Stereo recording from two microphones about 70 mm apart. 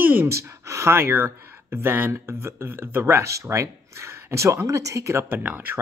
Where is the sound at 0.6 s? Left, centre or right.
Right.